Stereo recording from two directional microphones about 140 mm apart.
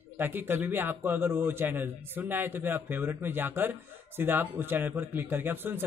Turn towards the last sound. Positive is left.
turn(degrees=-15)  # may be behind; listen again after turning